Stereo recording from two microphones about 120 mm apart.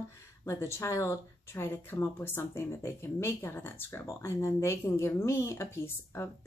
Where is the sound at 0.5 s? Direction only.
25° left (ahead or behind).